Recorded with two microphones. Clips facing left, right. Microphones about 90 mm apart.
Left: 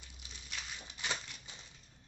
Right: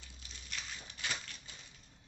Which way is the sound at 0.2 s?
20° left (ahead or behind).